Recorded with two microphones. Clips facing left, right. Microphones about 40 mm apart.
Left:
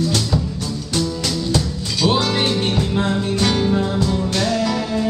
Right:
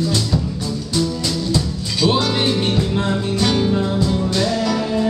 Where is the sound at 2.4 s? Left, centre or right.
Centre.